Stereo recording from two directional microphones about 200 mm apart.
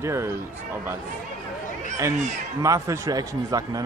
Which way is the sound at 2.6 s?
15° right (ahead or behind).